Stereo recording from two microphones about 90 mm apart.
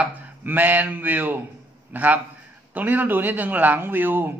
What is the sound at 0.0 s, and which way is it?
Chopping, 20° right (ahead or behind).